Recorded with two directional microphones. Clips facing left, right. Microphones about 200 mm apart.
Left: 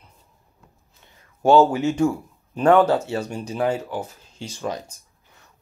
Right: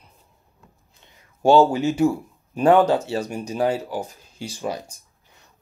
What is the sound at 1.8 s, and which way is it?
Speech, 10° right (ahead or behind).